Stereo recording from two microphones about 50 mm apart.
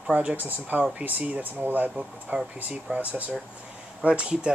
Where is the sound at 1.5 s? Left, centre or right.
Right.